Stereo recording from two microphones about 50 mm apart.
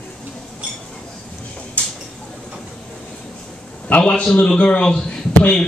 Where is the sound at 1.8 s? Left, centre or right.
Left.